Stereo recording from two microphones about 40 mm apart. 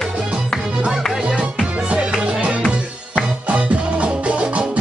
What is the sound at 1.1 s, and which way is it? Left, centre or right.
Music, centre.